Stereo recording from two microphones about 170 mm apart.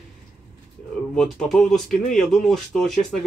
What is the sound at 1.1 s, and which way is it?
Speech, centre (ahead or behind).